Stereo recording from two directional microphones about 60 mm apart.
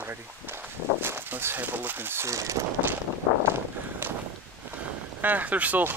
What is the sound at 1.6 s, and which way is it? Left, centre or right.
Speech, right.